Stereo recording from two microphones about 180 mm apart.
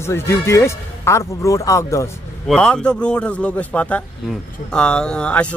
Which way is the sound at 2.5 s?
5° left (ahead or behind).